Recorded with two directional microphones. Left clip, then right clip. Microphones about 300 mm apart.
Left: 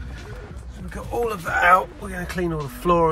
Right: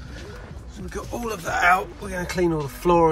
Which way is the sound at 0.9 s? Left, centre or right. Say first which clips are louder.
Left 5 dB; centre.